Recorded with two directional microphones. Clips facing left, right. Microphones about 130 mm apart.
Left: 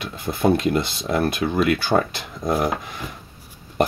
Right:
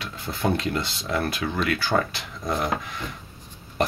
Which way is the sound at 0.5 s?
15° left (ahead or behind).